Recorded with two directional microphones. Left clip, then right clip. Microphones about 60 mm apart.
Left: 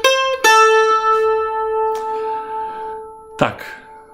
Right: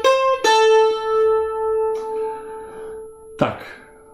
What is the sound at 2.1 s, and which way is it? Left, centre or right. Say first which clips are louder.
Music: left 4 dB; left.